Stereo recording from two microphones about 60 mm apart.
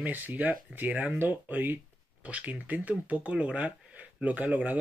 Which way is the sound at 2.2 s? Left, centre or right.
Right.